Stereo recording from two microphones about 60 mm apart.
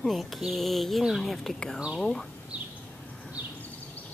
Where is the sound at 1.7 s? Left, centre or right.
Centre.